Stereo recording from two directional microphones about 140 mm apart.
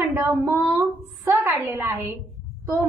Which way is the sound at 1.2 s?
15° right (ahead or behind).